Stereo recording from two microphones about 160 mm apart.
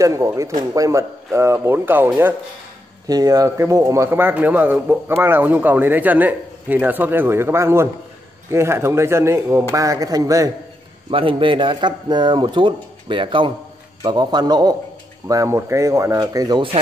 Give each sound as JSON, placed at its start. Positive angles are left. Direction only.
{"t": 0.0, "sound": "a man's voice", "side_deg": -20}
{"t": 11.1, "sound": "a man's voice", "side_deg": -35}